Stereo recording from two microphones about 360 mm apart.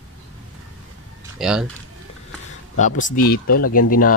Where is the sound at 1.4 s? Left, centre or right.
Centre.